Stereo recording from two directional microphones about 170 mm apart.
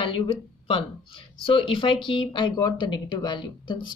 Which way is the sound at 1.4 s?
30° left (ahead or behind).